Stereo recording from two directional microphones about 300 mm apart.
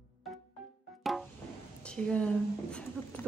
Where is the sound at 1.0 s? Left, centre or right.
Centre.